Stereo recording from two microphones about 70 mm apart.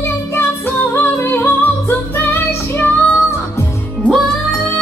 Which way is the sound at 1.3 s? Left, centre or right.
Left.